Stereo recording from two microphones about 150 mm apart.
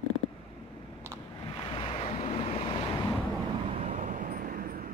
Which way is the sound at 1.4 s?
40° left (ahead or behind).